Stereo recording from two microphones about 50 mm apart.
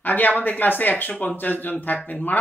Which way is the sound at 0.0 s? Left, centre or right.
Left.